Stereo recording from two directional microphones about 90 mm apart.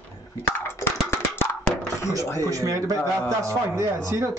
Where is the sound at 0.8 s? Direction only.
25° left (ahead or behind).